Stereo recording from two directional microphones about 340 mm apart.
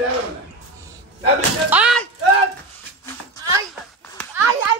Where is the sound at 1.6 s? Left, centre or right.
Centre.